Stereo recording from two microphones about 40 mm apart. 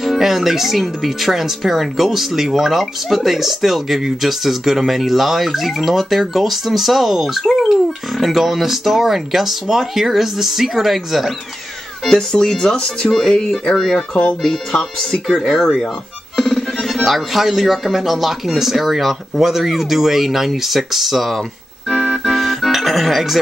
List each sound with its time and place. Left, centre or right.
0.0 s speech: centre
12.1 s speech: centre
16.3 s music: centre
16.9 s speech: centre
21.8 s organ: centre
22.2 s music: centre